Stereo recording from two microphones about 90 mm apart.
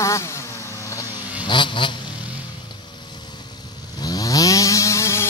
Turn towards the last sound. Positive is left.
turn(degrees=30)  # may be behind; listen again after turning